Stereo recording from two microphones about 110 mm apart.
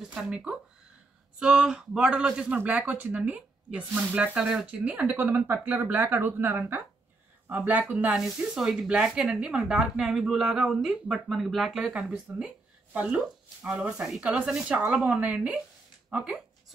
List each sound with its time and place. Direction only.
0.0 s speech: 5° right (ahead or behind)